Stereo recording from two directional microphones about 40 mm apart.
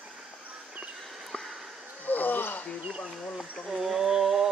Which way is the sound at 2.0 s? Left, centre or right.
Left.